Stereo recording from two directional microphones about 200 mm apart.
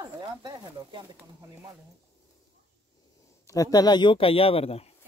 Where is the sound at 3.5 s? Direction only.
15° left (ahead or behind).